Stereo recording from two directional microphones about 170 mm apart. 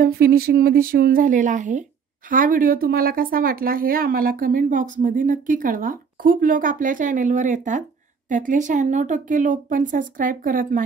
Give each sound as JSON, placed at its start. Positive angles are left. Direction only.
{"t": 0.0, "sound": "speech", "side_deg": -65}